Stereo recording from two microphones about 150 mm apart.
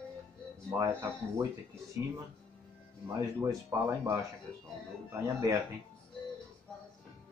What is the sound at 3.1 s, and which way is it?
Speech, 20° right (ahead or behind).